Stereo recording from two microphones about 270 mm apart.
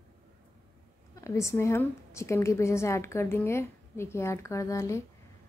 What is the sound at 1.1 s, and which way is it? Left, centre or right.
A woman's voice, centre.